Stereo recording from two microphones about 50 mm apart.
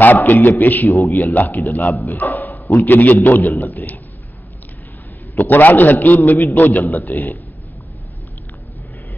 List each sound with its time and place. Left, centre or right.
0.0 s a man's voice: left
5.4 s a man's voice: left